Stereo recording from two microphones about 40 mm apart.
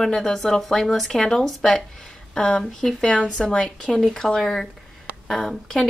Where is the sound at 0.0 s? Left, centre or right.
Centre.